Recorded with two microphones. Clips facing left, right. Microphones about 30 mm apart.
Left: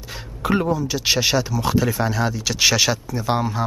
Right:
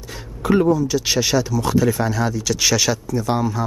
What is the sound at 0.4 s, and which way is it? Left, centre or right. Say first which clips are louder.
Speech: right 4 dB; centre.